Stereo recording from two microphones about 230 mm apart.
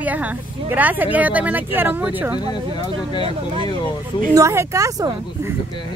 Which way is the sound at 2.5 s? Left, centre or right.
Centre.